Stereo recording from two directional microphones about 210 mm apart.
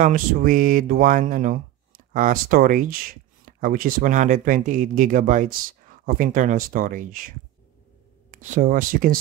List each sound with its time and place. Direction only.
0.0 s speech: 40° right (ahead or behind)